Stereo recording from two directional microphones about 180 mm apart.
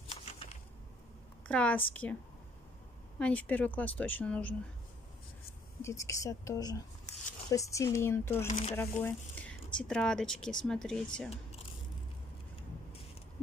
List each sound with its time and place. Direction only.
0.1 s a sound: 35° left (ahead or behind)
1.5 s a woman's voice: 5° left (ahead or behind)
3.2 s a woman's voice: 5° left (ahead or behind)
5.8 s a woman's voice: 15° left (ahead or behind)